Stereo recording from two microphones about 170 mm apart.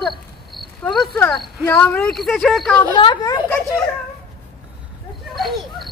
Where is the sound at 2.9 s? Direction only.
25° left (ahead or behind).